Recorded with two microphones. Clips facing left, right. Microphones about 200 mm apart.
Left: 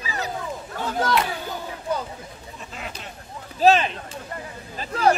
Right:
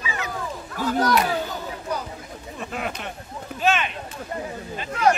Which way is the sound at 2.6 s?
60° right (ahead or behind).